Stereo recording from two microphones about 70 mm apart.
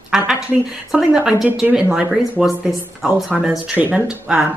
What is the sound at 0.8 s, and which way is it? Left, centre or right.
Speech, centre.